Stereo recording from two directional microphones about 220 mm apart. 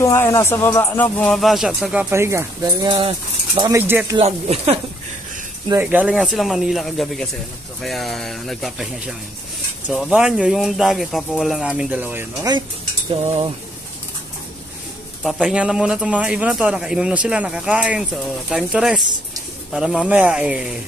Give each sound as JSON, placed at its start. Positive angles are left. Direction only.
{"t": 0.0, "sound": "speech", "side_deg": 15}
{"t": 4.2, "sound": "speech", "side_deg": -30}
{"t": 5.7, "sound": "speech", "side_deg": -10}
{"t": 15.2, "sound": "speech", "side_deg": 0}